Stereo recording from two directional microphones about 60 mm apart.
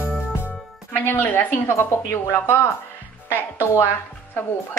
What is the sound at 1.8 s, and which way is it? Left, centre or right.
A woman's voice, left.